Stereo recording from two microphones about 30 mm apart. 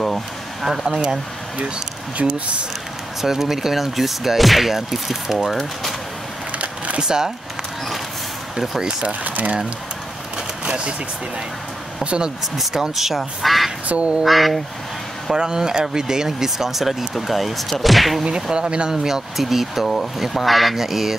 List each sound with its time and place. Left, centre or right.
0.0 s a sound: centre
0.7 s speech: centre
2.2 s speech: right
3.2 s speech: centre
5.5 s speech: centre
7.0 s speech: right
9.2 s speech: right
10.6 s speech: right
12.8 s speech: centre
13.8 s duck: right
14.2 s speech: centre
15.3 s speech: right; by 18.2 s centre
18.3 s speech: right
19.0 s speech: centre